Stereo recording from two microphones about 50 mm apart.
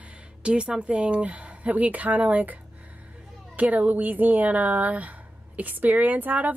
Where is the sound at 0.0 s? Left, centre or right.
Right.